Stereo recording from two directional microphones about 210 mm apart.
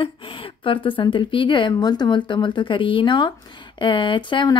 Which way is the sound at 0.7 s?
25° left (ahead or behind).